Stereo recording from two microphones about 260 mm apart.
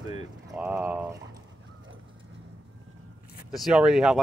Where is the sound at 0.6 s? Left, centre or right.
Centre.